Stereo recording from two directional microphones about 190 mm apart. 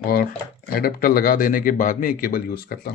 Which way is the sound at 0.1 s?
50° left (ahead or behind).